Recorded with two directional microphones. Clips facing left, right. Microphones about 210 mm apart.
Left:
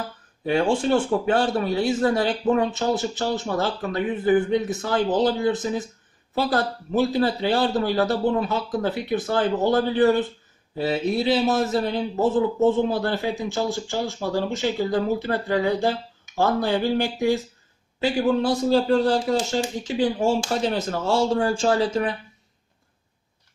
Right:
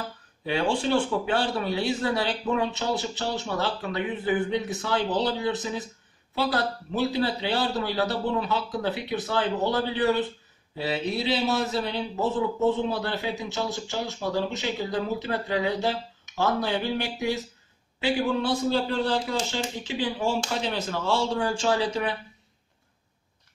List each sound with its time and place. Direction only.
0.5 s a man's voice: 45° left (ahead or behind)